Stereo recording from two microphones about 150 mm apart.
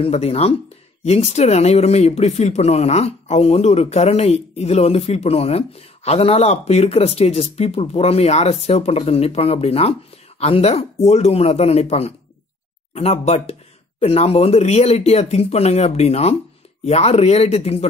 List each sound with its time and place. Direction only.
0.0 s speech: 40° left (ahead or behind)